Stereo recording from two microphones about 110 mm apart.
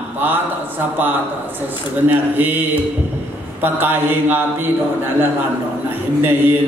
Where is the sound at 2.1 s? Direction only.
15° right (ahead or behind).